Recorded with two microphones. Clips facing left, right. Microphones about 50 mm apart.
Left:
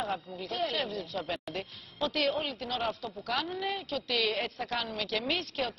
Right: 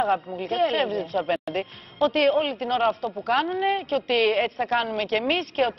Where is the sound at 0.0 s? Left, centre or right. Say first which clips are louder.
Right 11 dB; right.